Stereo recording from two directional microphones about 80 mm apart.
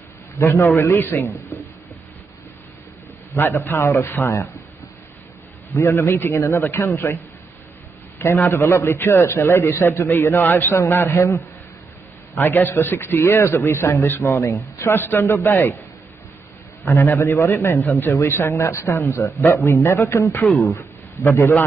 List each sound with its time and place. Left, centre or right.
0.4 s a man's voice: left
1.1 s speech: left
3.3 s a man's voice: left
5.8 s a man's voice: left
8.5 s a man's voice: left
14.8 s a man's voice: left
16.8 s a man's voice: left